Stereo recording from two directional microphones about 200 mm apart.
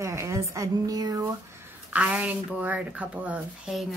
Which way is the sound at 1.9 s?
5° right (ahead or behind).